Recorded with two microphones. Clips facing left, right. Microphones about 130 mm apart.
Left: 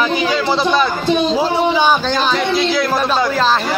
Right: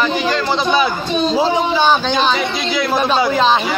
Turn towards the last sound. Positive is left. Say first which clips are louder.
# right 1 dB
turn(degrees=0)  # may be behind; listen again after turning